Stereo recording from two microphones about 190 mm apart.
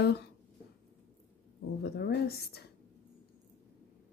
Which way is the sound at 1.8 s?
60° left (ahead or behind).